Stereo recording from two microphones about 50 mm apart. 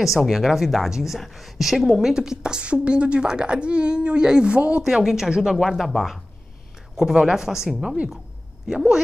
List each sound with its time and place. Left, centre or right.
0.0 s a woman's voice: centre; by 4.8 s right
4.8 s a woman's voice: centre
5.7 s a woman's voice: centre